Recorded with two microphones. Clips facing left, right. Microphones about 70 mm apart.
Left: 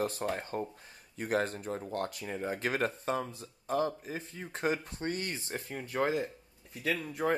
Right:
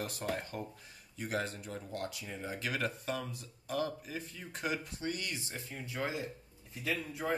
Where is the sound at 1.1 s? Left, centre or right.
Left.